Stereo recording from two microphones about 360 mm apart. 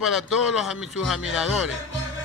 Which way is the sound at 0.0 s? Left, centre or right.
Centre.